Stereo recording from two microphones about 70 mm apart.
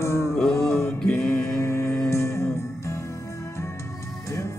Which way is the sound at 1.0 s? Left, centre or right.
Centre.